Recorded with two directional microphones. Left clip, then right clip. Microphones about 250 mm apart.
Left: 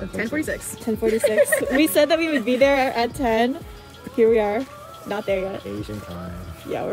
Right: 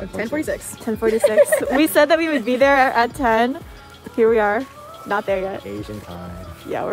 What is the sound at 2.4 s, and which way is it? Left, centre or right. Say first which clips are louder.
A woman's voice: right 4 dB; right.